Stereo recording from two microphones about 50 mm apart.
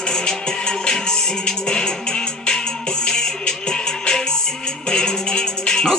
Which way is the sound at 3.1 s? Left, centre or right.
Centre.